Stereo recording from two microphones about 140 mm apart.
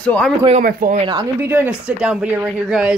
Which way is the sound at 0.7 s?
90° right.